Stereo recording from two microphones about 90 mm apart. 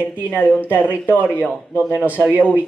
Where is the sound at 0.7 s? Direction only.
20° right (ahead or behind).